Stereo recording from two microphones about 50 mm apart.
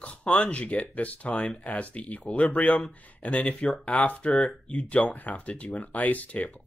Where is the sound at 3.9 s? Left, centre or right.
Left.